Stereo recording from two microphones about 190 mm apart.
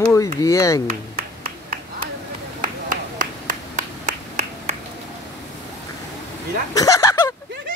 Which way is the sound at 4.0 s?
35° right (ahead or behind).